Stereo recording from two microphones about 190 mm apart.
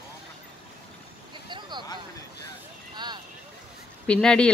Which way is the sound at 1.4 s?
25° right (ahead or behind).